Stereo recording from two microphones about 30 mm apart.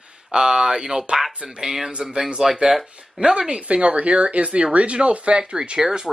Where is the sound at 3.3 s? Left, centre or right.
Right.